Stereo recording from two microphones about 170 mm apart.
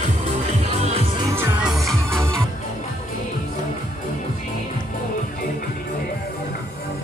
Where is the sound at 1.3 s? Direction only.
15° right (ahead or behind).